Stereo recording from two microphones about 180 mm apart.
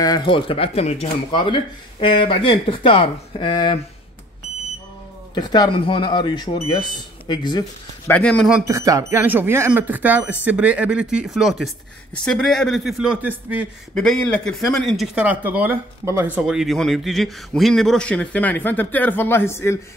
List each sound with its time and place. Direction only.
0.0 s speech: 25° left (ahead or behind)
5.3 s speech: 20° left (ahead or behind)
8.1 s a man's voice: 5° left (ahead or behind)
8.6 s speech: 15° right (ahead or behind); by 19.8 s 15° left (ahead or behind)